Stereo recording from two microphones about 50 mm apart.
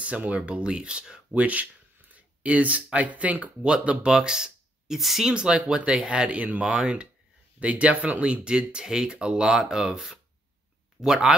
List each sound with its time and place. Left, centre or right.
0.0 s speech: right
1.3 s speech: right
6.6 s speech: centre